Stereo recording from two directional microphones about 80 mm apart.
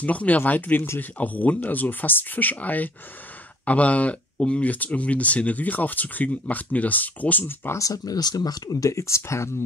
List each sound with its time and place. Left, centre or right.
0.0 s speech: centre
7.8 s speech: left